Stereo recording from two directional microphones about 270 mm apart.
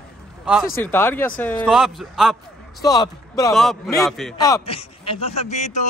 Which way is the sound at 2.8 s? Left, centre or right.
Centre.